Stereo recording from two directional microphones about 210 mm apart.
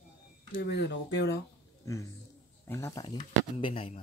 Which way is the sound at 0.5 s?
55° left (ahead or behind).